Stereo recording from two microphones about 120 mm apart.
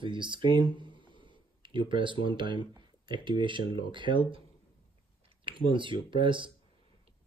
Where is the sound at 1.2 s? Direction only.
40° right (ahead or behind).